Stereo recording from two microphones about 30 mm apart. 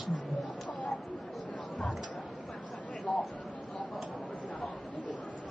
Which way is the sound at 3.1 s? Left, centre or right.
Centre.